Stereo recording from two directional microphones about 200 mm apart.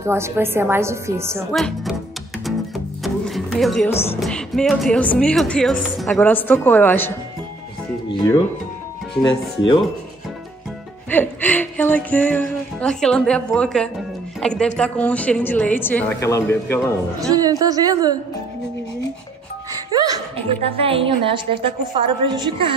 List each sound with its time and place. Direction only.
0.0 s a woman's voice: 15° right (ahead or behind)
1.5 s speech: centre (ahead or behind)
2.4 s music: centre (ahead or behind)
4.2 s speech: centre (ahead or behind)
11.1 s speech: 10° left (ahead or behind)
17.2 s a woman's voice: 15° right (ahead or behind)
19.9 s laughter: 20° right (ahead or behind)
20.6 s a woman's voice: 30° right (ahead or behind)